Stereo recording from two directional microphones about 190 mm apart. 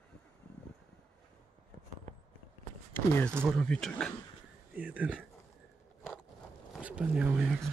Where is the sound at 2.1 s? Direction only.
40° right (ahead or behind).